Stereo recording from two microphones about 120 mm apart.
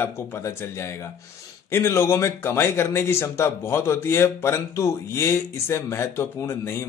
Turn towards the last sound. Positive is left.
turn(degrees=20)  # may be behind; listen again after turning